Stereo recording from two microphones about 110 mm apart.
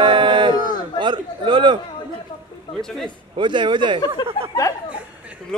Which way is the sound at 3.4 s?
45° right (ahead or behind).